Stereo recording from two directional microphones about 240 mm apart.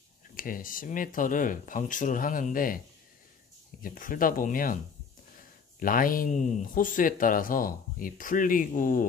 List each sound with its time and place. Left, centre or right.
0.4 s speech: left
3.8 s speech: left
5.8 s speech: left